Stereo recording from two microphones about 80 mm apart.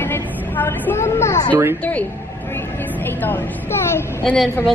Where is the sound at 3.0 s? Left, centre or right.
Left.